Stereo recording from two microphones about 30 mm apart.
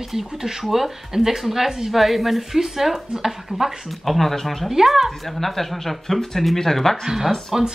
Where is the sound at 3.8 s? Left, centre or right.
Centre.